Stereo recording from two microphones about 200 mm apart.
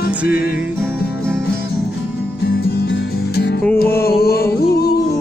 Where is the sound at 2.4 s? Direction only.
55° left (ahead or behind).